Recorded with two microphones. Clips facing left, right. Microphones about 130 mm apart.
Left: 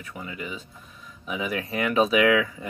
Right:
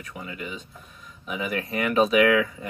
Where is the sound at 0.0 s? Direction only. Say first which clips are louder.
Even; centre (ahead or behind).